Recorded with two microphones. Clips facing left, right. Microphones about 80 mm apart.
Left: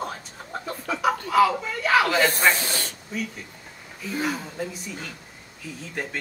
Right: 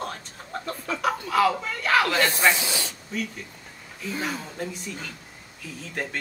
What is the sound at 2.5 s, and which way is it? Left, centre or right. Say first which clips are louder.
Speech: even; left.